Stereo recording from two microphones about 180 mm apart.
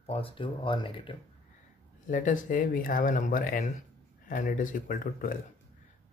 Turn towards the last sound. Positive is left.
turn(degrees=50)  # may be behind; listen again after turning